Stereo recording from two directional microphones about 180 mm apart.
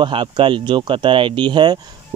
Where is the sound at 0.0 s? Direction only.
30° right (ahead or behind).